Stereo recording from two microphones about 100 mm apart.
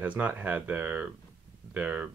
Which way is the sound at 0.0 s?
15° right (ahead or behind).